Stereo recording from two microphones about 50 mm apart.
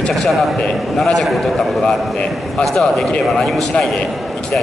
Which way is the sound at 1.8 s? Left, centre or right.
Centre.